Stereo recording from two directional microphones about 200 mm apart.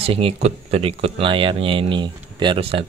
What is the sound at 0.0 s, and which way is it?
Speech, 30° right (ahead or behind).